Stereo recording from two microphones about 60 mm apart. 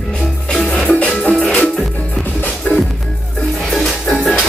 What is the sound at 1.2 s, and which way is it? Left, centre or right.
Music, centre.